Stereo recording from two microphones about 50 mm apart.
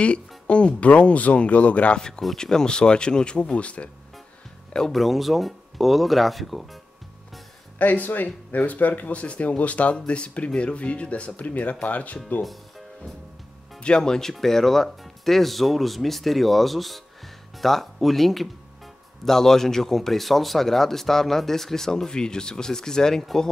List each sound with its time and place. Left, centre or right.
0.0 s speech: left
4.9 s speech: centre
7.8 s speech: left
13.8 s speech: centre